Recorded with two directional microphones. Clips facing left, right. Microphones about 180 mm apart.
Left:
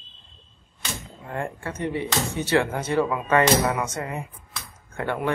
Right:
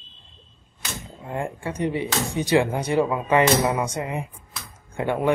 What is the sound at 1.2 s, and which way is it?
Speech, 15° right (ahead or behind).